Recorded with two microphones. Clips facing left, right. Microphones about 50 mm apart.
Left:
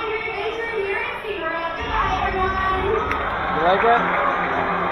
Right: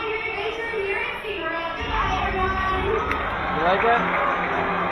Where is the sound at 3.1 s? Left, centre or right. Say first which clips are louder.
Left 2 dB; left.